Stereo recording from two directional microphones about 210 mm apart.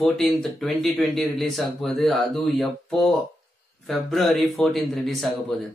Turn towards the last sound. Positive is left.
turn(degrees=0)  # may be behind; listen again after turning